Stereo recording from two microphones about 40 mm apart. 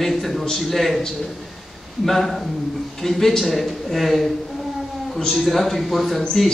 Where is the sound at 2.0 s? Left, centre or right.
Centre.